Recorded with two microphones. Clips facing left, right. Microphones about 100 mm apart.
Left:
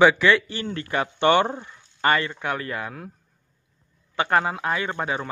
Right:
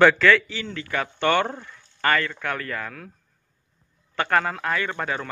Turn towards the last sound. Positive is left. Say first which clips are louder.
# left 1 dB
turn(degrees=15)  # may be behind; listen again after turning